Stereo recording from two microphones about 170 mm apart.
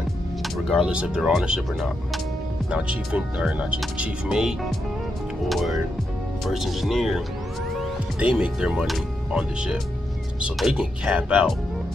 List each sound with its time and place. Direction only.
0.4 s speech: 5° right (ahead or behind)